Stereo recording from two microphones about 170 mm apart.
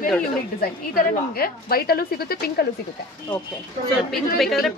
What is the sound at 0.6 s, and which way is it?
A woman's voice, 60° left (ahead or behind).